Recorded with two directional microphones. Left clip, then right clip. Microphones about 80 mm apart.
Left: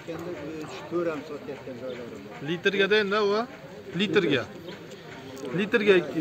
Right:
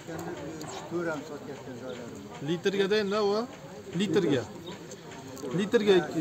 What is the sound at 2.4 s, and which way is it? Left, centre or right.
A man's voice, right.